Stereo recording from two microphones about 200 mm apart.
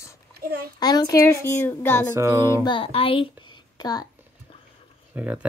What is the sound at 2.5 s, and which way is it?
Speech, 25° left (ahead or behind).